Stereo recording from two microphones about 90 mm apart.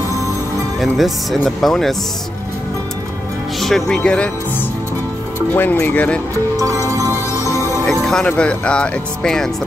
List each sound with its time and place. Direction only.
0.7 s speech: centre (ahead or behind)
3.5 s speech: 5° left (ahead or behind)
5.5 s speech: 20° left (ahead or behind)
6.5 s music: 40° right (ahead or behind)
7.8 s speech: 5° left (ahead or behind)